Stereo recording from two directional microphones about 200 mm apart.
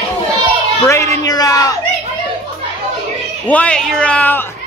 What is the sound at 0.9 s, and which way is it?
Speech, 15° left (ahead or behind).